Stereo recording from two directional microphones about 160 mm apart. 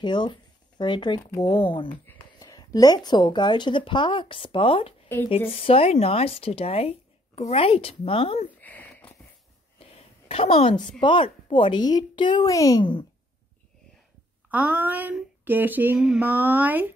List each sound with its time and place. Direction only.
0.0 s speech: 30° left (ahead or behind)
2.0 s speech: 20° left (ahead or behind)
8.5 s a sound: 10° left (ahead or behind)
9.8 s a sound: 40° left (ahead or behind)
11.0 s speech: 30° left (ahead or behind)
14.5 s speech: 10° right (ahead or behind)